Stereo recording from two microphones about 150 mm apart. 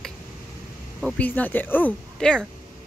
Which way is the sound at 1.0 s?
10° left (ahead or behind).